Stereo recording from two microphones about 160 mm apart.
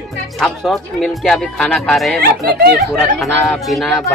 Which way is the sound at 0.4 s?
Centre (ahead or behind).